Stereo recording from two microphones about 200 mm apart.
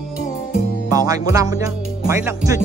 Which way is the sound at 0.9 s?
15° right (ahead or behind).